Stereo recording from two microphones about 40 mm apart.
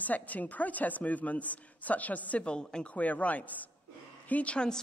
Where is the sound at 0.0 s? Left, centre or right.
Left.